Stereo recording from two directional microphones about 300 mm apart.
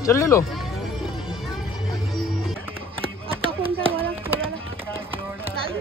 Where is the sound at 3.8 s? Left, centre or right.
Centre.